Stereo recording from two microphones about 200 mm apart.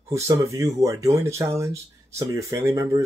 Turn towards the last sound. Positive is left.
turn(degrees=-15)  # may be behind; listen again after turning